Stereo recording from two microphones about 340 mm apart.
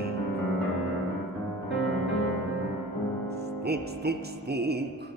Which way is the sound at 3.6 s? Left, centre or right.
Right.